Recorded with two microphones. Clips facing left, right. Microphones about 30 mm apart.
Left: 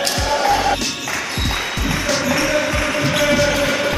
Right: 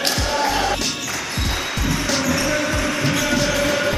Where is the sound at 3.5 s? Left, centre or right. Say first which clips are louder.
Left 2 dB; centre.